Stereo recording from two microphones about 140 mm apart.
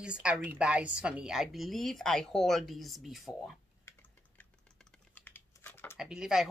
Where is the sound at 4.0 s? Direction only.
10° left (ahead or behind).